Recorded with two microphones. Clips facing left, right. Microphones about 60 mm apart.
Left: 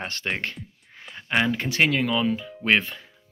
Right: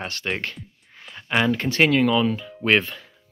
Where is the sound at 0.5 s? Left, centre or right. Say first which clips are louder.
Even; centre.